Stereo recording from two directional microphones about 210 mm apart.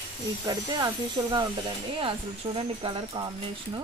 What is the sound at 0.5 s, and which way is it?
Speech, 20° right (ahead or behind).